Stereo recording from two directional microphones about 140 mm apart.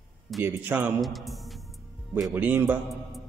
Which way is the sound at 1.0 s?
Centre (ahead or behind).